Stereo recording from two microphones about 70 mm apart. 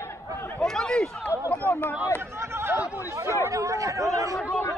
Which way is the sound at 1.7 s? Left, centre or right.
Left.